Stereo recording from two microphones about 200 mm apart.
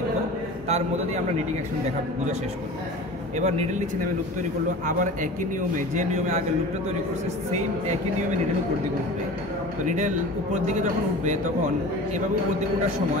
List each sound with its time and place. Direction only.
0.7 s a man's voice: 35° right (ahead or behind)
3.3 s a man's voice: 35° right (ahead or behind)
4.8 s a man's voice: 40° right (ahead or behind)
9.8 s a man's voice: 35° right (ahead or behind)